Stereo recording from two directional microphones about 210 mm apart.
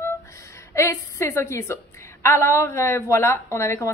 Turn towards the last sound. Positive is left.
turn(degrees=15)  # may be behind; listen again after turning